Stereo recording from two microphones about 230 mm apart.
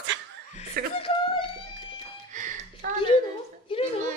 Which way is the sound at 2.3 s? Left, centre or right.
Right.